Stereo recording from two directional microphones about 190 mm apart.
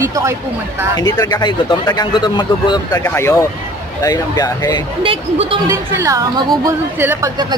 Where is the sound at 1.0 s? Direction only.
20° left (ahead or behind).